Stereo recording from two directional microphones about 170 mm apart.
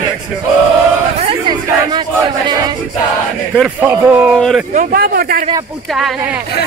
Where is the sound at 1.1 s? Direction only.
30° right (ahead or behind).